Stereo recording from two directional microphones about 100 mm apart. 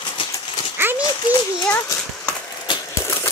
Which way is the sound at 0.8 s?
20° right (ahead or behind).